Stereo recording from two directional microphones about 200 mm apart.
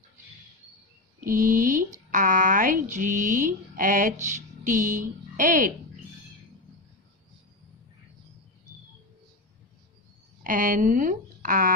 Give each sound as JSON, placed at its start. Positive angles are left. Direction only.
{"t": 1.2, "sound": "speech", "side_deg": -40}
{"t": 10.4, "sound": "speech", "side_deg": -40}